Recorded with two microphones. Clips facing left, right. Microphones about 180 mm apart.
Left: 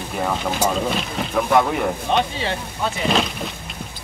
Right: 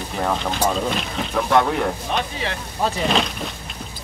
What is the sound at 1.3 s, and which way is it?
Speech, 5° left (ahead or behind).